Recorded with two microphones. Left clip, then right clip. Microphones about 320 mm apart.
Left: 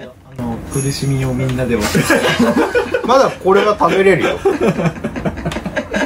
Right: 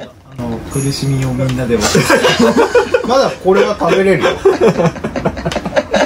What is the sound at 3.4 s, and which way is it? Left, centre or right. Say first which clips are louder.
Speech: right 1 dB; centre.